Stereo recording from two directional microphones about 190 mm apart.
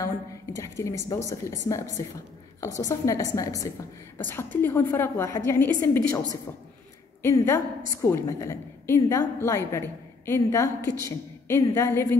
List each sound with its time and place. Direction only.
0.6 s a woman's voice: 15° left (ahead or behind)